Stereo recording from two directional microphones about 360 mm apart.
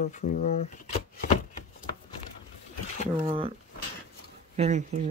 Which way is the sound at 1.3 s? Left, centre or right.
Left.